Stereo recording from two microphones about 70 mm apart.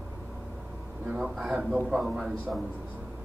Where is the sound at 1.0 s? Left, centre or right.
Centre.